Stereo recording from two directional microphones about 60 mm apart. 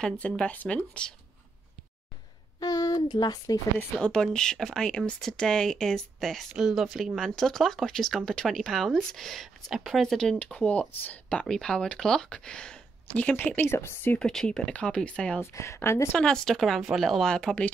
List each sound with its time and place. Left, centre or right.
0.4 s speech: left
2.6 s speech: left
4.0 s speech: centre
6.5 s speech: centre
7.2 s speech: centre
10.4 s speech: centre
11.4 s speech: centre; by 13.7 s left
13.7 s speech: left
14.2 s speech: centre
15.4 s speech: left
16.1 s speech: centre
17.3 s speech: centre